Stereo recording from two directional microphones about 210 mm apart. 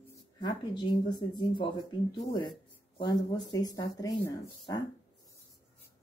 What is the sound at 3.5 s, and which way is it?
Speech, 15° left (ahead or behind).